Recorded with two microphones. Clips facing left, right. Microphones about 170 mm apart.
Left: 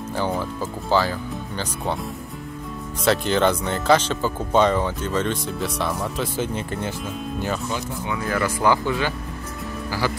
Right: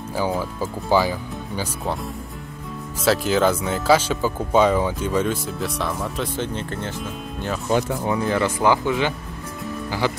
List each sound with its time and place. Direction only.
0.1 s speech: 10° right (ahead or behind)
3.1 s speech: 5° right (ahead or behind)
7.7 s speech: 45° right (ahead or behind)
8.2 s speech: 25° right (ahead or behind)